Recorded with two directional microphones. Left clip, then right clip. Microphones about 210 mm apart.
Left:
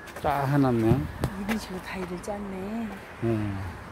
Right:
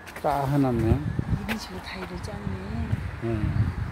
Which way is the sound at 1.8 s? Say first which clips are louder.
Left 1 dB; 35° left (ahead or behind).